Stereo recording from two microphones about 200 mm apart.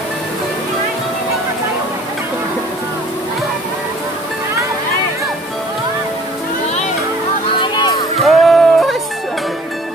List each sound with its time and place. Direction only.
7.5 s music: 25° left (ahead or behind)
8.2 s music: centre (ahead or behind)